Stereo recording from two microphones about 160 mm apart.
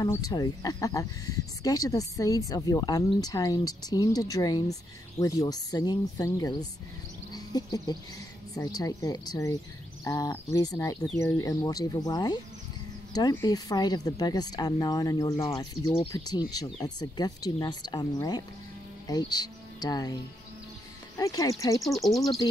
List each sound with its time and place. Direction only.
0.0 s speech: 20° left (ahead or behind)
21.2 s speech: 20° left (ahead or behind)
21.7 s speech: centre (ahead or behind)
22.4 s speech: 25° left (ahead or behind)